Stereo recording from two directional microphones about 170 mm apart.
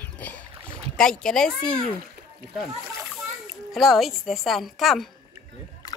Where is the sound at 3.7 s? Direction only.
Centre (ahead or behind).